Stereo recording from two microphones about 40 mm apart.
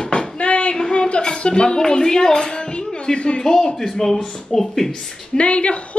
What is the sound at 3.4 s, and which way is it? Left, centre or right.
Speech, centre.